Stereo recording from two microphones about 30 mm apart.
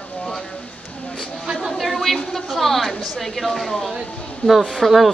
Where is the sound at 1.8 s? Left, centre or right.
Centre.